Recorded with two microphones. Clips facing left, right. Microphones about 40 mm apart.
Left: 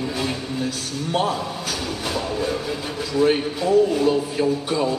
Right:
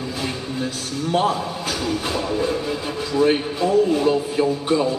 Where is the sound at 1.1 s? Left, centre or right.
Right.